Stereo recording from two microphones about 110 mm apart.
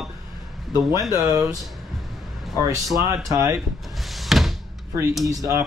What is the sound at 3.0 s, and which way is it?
Speech, 30° right (ahead or behind).